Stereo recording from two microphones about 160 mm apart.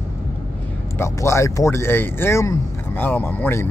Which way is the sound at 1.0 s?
15° left (ahead or behind).